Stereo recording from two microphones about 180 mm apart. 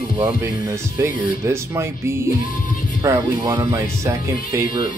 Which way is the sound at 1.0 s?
15° right (ahead or behind).